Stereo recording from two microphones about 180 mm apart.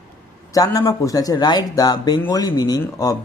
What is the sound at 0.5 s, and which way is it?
Speech, 20° left (ahead or behind).